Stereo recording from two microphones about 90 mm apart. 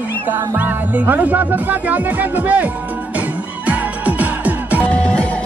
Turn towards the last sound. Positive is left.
turn(degrees=15)  # may be behind; listen again after turning